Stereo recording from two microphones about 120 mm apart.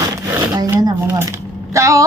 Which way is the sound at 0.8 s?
25° right (ahead or behind).